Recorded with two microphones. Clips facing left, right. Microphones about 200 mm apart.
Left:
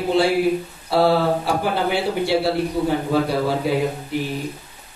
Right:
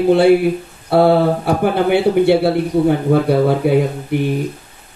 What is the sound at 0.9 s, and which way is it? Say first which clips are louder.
Mantra: right 5 dB; 55° right (ahead or behind).